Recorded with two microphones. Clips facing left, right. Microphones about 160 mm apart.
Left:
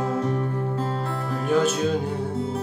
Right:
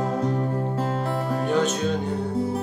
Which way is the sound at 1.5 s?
5° left (ahead or behind).